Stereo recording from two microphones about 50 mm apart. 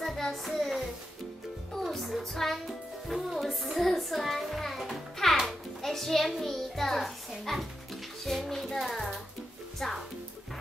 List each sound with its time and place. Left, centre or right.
0.0 s child singing: centre
1.7 s music: centre
5.8 s a sound: centre
9.8 s music: centre